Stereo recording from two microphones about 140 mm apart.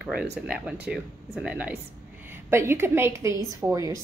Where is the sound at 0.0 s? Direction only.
5° right (ahead or behind).